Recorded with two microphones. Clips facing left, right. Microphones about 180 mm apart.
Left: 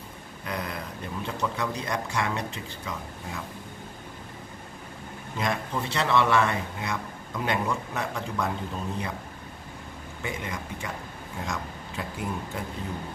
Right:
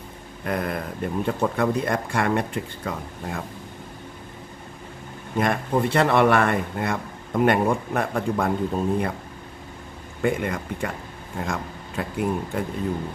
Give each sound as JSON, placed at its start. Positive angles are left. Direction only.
{"t": 0.4, "sound": "speech", "side_deg": -50}
{"t": 5.4, "sound": "a man's voice", "side_deg": -55}
{"t": 10.2, "sound": "a man's voice", "side_deg": -55}